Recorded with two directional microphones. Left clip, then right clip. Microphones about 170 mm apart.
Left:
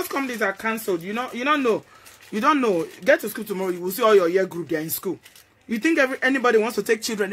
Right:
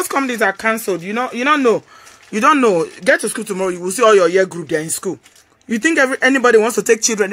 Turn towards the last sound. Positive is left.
turn(degrees=-35)  # may be behind; listen again after turning